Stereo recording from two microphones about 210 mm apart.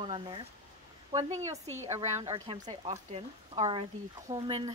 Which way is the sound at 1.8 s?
30° right (ahead or behind).